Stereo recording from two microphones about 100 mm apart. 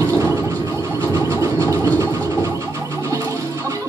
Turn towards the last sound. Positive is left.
turn(degrees=-30)  # may be behind; listen again after turning